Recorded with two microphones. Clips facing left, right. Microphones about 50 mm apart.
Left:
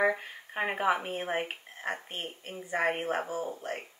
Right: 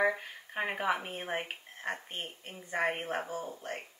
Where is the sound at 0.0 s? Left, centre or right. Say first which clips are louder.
Left 2 dB; centre.